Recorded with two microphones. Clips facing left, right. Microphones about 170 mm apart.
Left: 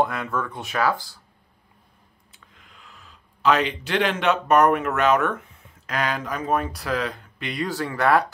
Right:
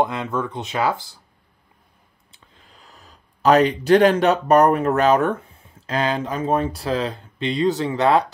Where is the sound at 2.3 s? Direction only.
35° right (ahead or behind).